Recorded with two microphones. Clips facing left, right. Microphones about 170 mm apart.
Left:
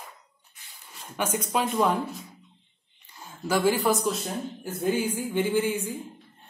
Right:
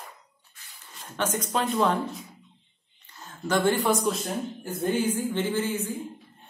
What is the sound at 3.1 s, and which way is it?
Speech, 10° left (ahead or behind).